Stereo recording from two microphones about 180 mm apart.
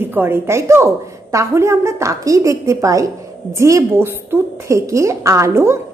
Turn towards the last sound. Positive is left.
turn(degrees=-15)  # may be behind; listen again after turning